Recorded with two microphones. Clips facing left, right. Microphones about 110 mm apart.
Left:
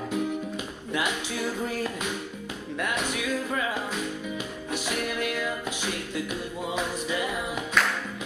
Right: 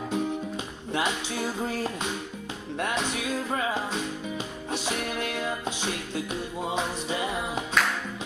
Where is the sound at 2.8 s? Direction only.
30° right (ahead or behind).